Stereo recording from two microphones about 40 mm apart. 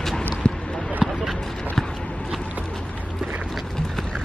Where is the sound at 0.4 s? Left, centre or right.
Centre.